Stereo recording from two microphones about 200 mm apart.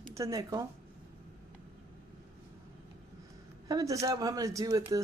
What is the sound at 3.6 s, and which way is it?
A woman's voice, 15° right (ahead or behind).